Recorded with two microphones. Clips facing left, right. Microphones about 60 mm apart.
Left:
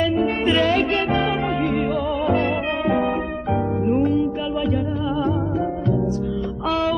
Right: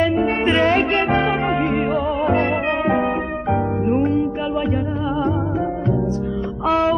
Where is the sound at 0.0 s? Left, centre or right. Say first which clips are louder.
Right 2 dB; right.